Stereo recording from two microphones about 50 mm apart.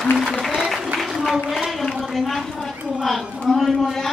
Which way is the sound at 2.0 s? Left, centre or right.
Centre.